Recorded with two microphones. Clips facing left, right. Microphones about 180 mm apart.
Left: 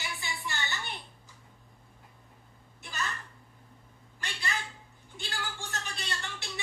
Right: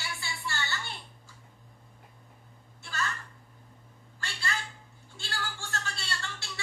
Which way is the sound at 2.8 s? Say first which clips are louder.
Right 2 dB; 20° left (ahead or behind).